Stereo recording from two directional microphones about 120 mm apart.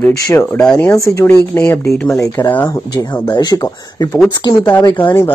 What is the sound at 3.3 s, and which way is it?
Speech, 35° left (ahead or behind).